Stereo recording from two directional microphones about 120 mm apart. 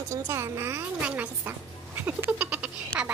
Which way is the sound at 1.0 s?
10° right (ahead or behind).